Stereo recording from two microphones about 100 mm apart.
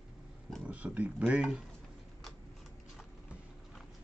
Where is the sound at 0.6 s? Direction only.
15° right (ahead or behind).